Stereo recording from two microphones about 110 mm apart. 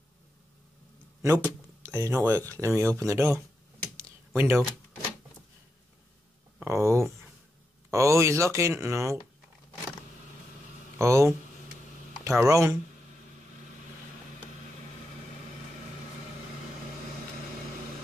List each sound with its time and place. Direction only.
1.2 s speech: 25° right (ahead or behind)
3.9 s computer keyboard: 25° right (ahead or behind)
6.6 s speech: 25° right (ahead or behind)
11.0 s speech: 25° right (ahead or behind)